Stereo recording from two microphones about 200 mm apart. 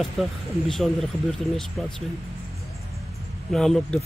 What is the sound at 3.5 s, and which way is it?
Speech, centre (ahead or behind).